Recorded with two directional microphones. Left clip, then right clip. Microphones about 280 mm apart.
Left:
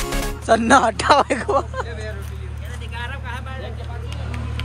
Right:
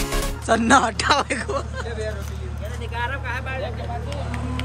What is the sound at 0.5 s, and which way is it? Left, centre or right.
Speech, centre.